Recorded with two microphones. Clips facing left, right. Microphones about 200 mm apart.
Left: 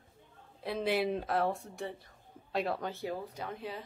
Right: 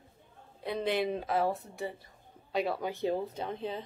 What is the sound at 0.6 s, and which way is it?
Speech, centre (ahead or behind).